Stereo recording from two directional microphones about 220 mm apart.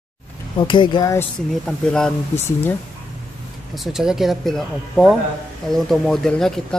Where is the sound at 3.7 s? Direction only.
Centre (ahead or behind).